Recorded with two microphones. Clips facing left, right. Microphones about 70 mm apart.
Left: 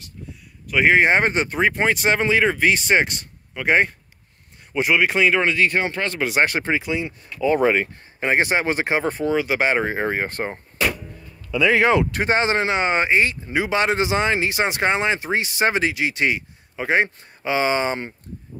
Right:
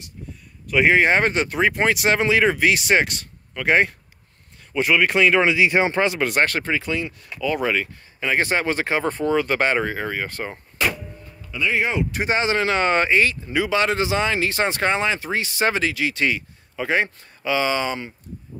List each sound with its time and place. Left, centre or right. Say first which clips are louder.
0.7 s speech: even; centre
0.9 s speech: left 1 dB; left
1.4 s speech: even; centre
6.1 s speech: even; centre
6.4 s speech: left 1 dB; centre; by 8.4 s left
8.4 s speech: even; left
9.9 s speech: left 4 dB; left
11.8 s speech: left 6 dB; left
12.1 s speech: left 2 dB; left